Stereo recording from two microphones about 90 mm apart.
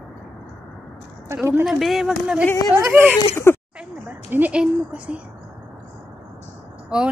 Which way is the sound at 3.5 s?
30° left (ahead or behind).